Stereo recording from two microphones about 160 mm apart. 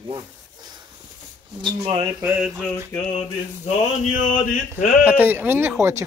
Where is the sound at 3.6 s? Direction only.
50° left (ahead or behind).